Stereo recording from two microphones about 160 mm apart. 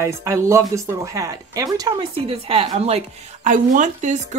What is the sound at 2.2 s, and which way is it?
A woman's voice, 35° right (ahead or behind).